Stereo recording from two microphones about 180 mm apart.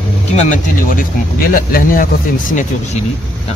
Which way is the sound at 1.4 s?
55° left (ahead or behind).